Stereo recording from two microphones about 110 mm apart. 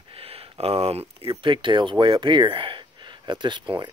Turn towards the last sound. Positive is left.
turn(degrees=-45)  # may be behind; listen again after turning